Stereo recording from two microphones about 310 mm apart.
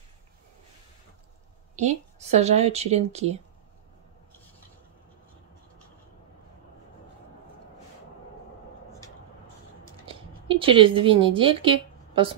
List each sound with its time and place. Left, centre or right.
1.8 s speech: right
10.0 s speech: centre